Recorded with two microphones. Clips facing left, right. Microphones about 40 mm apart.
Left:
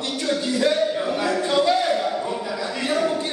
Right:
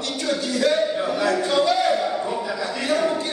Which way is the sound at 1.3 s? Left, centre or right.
Centre.